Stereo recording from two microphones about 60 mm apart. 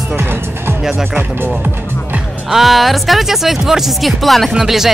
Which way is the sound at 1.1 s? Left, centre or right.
Right.